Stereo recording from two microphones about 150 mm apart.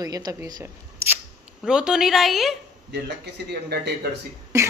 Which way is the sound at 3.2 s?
90° right.